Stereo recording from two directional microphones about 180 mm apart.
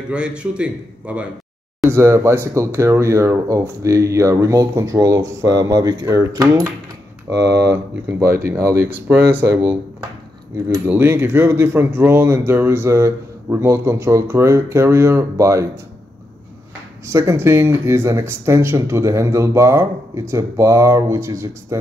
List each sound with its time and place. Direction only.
0.1 s a man's voice: 5° right (ahead or behind)
7.3 s speech: 75° right (ahead or behind)
7.7 s speech: 10° right (ahead or behind)
10.9 s speech: 10° right (ahead or behind)
17.1 s speech: 15° right (ahead or behind)